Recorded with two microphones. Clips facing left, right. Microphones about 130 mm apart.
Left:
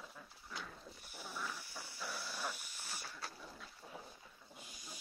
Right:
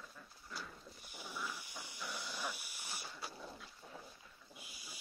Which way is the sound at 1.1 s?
15° right (ahead or behind).